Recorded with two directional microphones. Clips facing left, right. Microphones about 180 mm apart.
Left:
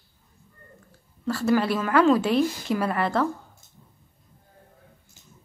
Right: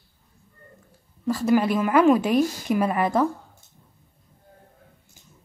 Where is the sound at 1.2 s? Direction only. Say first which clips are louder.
Right 2 dB; 15° right (ahead or behind).